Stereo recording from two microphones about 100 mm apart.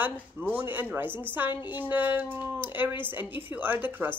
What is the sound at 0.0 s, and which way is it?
A woman's voice, 20° right (ahead or behind).